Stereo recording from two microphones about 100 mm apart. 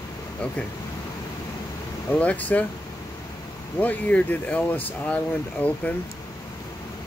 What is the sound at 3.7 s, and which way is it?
Speech, 15° left (ahead or behind).